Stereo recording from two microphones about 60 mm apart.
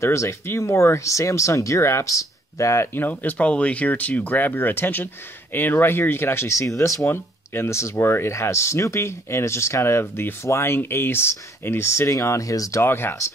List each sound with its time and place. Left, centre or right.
0.0 s speech: left
2.9 s speech: left
7.1 s speech: left
12.8 s speech: left